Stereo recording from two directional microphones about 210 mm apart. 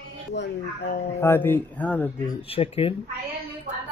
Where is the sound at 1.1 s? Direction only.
10° left (ahead or behind).